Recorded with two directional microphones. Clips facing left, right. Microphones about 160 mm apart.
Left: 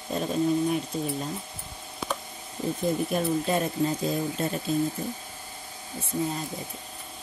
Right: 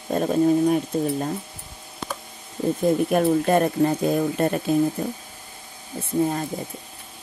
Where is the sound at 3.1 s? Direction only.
55° right (ahead or behind).